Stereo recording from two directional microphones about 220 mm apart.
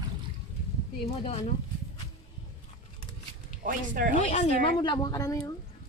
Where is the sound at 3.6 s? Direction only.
40° right (ahead or behind).